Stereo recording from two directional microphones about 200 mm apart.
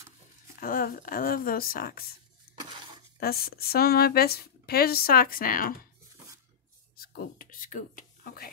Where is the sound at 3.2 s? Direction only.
50° left (ahead or behind).